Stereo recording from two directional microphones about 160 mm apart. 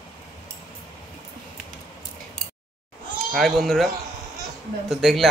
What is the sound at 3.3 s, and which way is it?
Speech, centre (ahead or behind).